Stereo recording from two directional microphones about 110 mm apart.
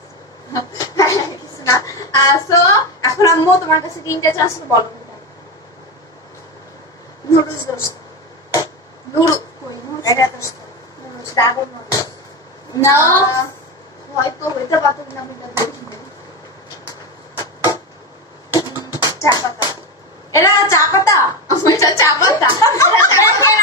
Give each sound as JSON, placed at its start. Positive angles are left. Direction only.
{"t": 0.5, "sound": "speech", "side_deg": 35}
{"t": 7.2, "sound": "a woman's voice", "side_deg": 35}
{"t": 9.1, "sound": "a sound", "side_deg": 35}
{"t": 11.3, "sound": "a woman's voice", "side_deg": 35}
{"t": 15.5, "sound": "a sound", "side_deg": 35}
{"t": 19.0, "sound": "music", "side_deg": 35}
{"t": 20.3, "sound": "a woman's voice", "side_deg": 30}